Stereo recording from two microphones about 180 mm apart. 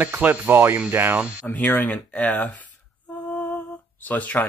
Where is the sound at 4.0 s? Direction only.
10° left (ahead or behind).